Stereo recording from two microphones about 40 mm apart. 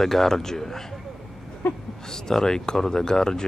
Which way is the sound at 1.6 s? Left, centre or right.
Left.